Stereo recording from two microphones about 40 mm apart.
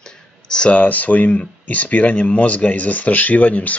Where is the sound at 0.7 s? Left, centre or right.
Left.